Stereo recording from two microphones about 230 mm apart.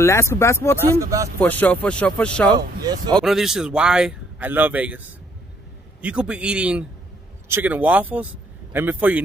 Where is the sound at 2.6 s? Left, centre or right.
Centre.